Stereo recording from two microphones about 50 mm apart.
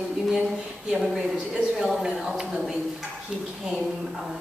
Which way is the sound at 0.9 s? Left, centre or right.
Centre.